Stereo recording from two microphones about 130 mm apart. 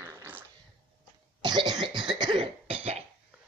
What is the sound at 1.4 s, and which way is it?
Cough, 35° right (ahead or behind).